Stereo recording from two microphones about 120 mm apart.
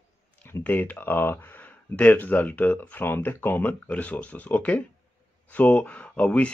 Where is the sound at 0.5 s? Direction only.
15° left (ahead or behind).